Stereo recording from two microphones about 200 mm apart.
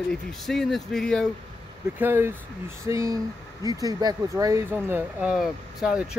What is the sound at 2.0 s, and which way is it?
A man's voice, 10° right (ahead or behind).